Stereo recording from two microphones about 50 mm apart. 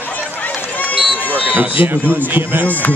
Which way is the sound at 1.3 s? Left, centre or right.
Right.